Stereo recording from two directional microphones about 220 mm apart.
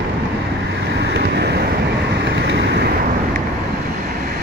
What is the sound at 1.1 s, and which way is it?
Vehicle, 50° right (ahead or behind).